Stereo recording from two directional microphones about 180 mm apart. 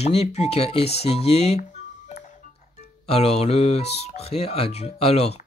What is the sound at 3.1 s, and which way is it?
Speech, 35° left (ahead or behind).